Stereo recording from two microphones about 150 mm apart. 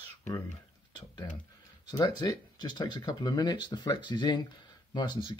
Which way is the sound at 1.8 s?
30° left (ahead or behind).